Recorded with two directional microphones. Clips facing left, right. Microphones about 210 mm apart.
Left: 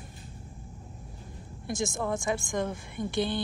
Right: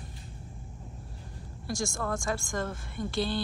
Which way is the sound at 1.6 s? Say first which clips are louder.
Left 2 dB; 20° left (ahead or behind).